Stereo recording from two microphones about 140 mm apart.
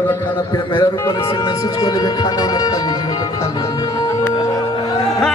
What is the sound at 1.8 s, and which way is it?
Speech, 30° left (ahead or behind).